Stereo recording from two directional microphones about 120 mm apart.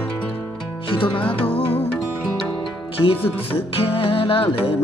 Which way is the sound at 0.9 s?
45° left (ahead or behind).